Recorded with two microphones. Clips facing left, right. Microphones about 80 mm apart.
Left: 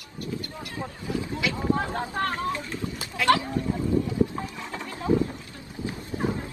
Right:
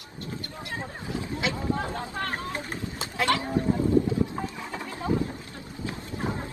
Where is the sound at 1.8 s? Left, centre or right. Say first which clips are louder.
Left 4 dB; left.